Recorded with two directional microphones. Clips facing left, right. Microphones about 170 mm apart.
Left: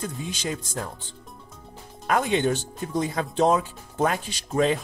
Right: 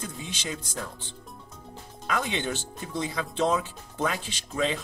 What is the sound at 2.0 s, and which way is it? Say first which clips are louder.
Speech: left 7 dB; 50° left (ahead or behind).